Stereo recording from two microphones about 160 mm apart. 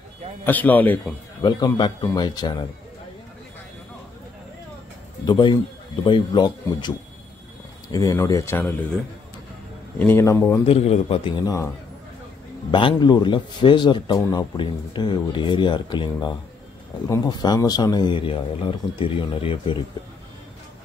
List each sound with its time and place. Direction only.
0.5 s speech: 10° left (ahead or behind)
1.4 s speech: 25° left (ahead or behind)
5.2 s speech: 30° left (ahead or behind)
10.6 s a man's voice: 35° left (ahead or behind)
11.4 s speech: 20° left (ahead or behind)
12.7 s speech: 30° left (ahead or behind)